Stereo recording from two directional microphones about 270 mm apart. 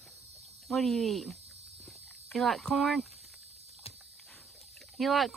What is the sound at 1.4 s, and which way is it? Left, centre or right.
Cricket, right.